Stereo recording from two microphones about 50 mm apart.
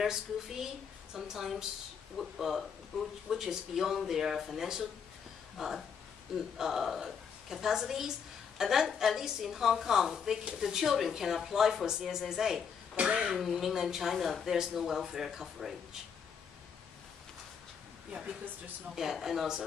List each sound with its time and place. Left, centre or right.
0.0 s a woman's voice: centre
12.9 s speech: centre
13.3 s a woman's voice: centre
18.9 s a woman's voice: centre